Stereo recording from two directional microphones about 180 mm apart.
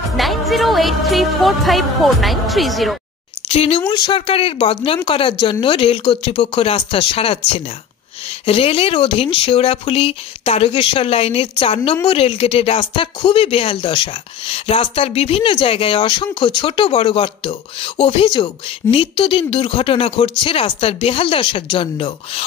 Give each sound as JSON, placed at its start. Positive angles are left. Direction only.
{"t": 0.2, "sound": "a woman's voice", "side_deg": 0}
{"t": 3.4, "sound": "speech", "side_deg": 35}